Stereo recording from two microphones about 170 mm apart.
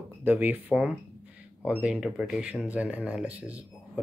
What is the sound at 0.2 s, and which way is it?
Speech, 10° right (ahead or behind).